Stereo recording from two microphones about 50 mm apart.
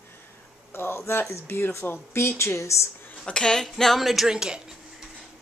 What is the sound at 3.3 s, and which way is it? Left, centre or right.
Speech, centre.